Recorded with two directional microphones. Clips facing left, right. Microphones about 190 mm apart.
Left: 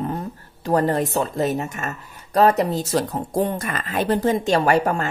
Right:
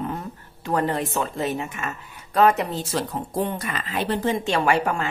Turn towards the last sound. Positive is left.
turn(degrees=40)  # may be behind; listen again after turning